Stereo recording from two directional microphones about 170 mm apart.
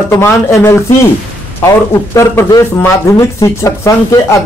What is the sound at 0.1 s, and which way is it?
Speech, 15° left (ahead or behind).